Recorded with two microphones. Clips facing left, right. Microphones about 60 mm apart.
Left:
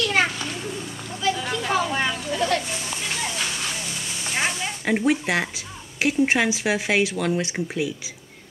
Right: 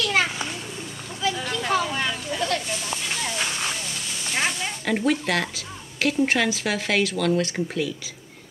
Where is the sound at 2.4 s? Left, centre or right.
Left.